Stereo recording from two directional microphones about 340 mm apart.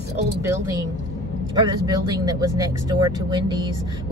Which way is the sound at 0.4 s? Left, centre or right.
Centre.